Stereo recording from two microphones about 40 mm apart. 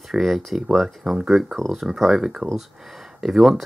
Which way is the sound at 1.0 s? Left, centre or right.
Centre.